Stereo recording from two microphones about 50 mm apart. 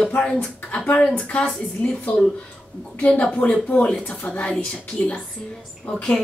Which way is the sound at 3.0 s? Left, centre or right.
Left.